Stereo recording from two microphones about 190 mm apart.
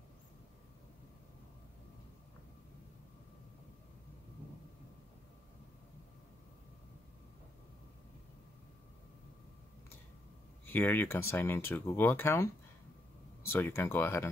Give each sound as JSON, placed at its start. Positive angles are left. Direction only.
{"t": 10.7, "sound": "speech", "side_deg": 10}